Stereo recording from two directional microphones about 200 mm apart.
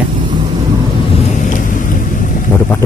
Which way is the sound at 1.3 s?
40° left (ahead or behind).